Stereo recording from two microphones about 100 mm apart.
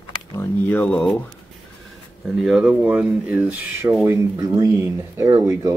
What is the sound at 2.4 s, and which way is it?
Speech, 10° right (ahead or behind).